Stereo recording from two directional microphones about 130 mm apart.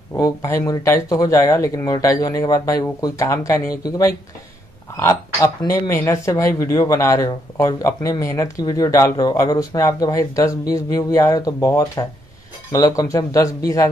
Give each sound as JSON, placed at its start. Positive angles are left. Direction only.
{"t": 0.2, "sound": "speech", "side_deg": 25}